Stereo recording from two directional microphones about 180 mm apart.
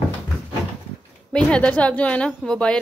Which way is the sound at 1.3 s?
5° left (ahead or behind).